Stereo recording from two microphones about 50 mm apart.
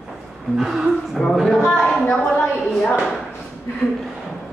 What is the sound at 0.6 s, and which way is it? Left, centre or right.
Speech, centre.